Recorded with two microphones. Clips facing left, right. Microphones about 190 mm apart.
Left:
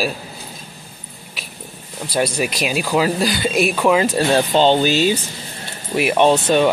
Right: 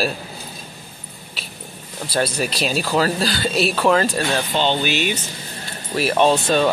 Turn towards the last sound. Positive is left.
turn(degrees=15)  # may be behind; listen again after turning